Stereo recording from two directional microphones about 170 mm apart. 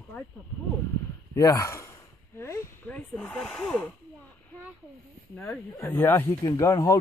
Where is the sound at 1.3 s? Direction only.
20° left (ahead or behind).